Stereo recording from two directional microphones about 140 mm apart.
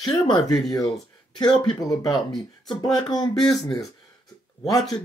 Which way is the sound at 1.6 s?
25° left (ahead or behind).